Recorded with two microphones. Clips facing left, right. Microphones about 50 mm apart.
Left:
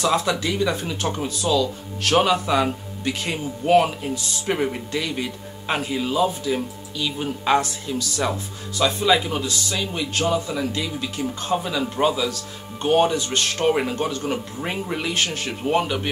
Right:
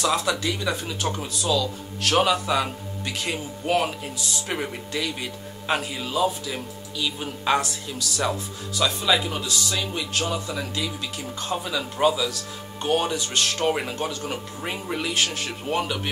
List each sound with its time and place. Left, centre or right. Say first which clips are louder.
0.0 s speech: left 2 dB; centre